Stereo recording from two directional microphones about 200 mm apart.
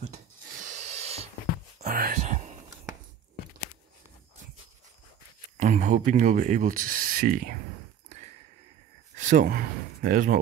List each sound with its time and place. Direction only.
0.6 s a sound: 35° right (ahead or behind)
1.8 s music: 45° right (ahead or behind)
5.6 s speech: 40° right (ahead or behind)
9.1 s speech: 40° right (ahead or behind)